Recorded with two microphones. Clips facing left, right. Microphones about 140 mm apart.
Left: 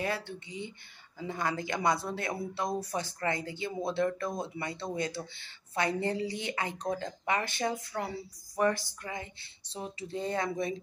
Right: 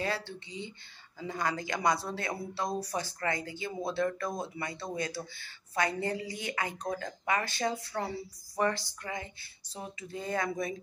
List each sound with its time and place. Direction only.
1.2 s speech: 25° left (ahead or behind)